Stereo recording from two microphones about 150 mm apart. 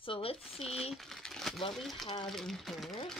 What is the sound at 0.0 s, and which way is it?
Speech, 35° left (ahead or behind).